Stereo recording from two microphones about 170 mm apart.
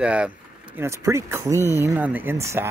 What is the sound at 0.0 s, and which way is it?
Speech, 5° right (ahead or behind).